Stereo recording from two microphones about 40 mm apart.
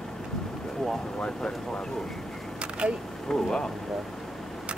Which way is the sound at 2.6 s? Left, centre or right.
Right.